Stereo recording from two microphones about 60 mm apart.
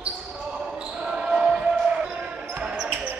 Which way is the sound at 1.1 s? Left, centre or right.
Centre.